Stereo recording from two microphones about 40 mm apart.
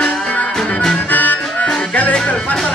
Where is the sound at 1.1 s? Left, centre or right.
Left.